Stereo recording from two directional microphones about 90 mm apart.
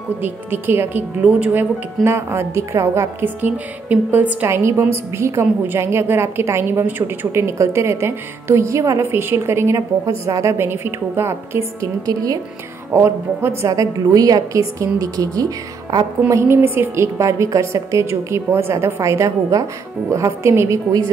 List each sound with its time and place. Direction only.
0.2 s a woman's voice: 25° right (ahead or behind)
2.0 s a woman's voice: 30° right (ahead or behind)
12.1 s a woman's voice: 40° right (ahead or behind)
12.9 s a woman's voice: 25° right (ahead or behind)
13.7 s a woman's voice: 40° right (ahead or behind)